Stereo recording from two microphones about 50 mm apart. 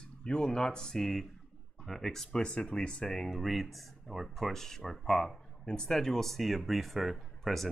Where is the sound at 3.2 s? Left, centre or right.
Centre.